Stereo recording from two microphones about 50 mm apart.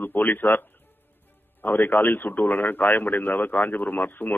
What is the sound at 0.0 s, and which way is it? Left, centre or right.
Speech, left.